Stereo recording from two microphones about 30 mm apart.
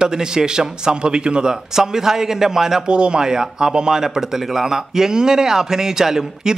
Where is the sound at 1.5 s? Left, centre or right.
Centre.